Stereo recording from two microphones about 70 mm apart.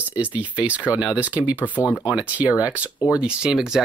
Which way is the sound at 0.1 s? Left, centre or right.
Right.